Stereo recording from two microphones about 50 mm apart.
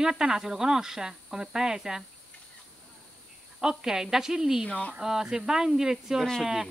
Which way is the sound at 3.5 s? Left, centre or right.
Centre.